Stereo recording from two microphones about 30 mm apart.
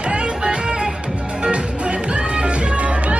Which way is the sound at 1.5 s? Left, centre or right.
Right.